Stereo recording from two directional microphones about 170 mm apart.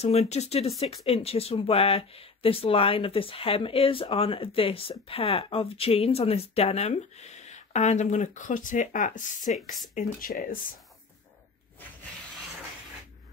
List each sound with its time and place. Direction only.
0.0 s speech: 40° left (ahead or behind); by 10.6 s 55° left (ahead or behind)